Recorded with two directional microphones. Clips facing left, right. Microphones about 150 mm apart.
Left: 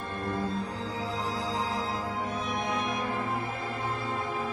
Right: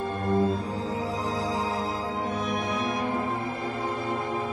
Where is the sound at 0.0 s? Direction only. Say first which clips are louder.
Right 7 dB; 30° right (ahead or behind).